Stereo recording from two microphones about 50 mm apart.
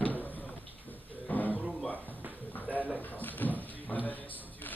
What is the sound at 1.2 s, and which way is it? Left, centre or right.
Roaring cats, left.